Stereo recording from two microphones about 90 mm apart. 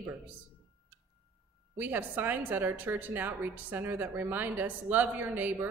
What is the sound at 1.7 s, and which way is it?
A woman's voice, 20° right (ahead or behind).